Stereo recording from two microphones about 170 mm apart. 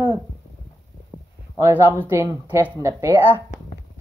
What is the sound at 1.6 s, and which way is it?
Speech, 15° right (ahead or behind).